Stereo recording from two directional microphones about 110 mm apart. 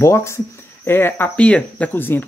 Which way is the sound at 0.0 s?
25° left (ahead or behind).